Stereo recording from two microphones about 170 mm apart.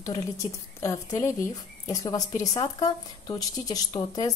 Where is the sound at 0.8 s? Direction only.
20° left (ahead or behind).